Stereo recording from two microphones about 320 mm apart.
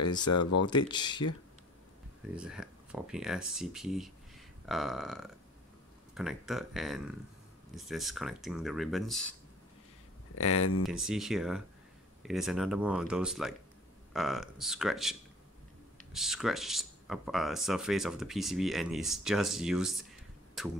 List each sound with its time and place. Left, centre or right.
0.2 s speech: left
0.8 s speech: centre
2.3 s speech: centre
10.3 s speech: left
10.8 s speech: centre